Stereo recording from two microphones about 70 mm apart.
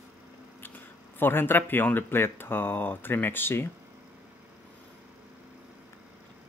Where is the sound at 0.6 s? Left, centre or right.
Left.